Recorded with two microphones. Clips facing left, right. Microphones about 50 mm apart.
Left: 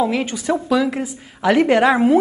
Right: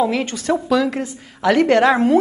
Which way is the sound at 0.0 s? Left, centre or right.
Centre.